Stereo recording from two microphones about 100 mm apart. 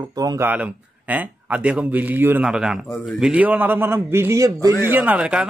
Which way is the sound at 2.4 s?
5° right (ahead or behind).